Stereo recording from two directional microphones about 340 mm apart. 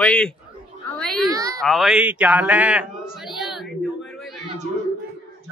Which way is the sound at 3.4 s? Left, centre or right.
Centre.